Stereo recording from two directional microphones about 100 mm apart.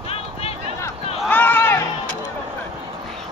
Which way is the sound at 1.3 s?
20° left (ahead or behind).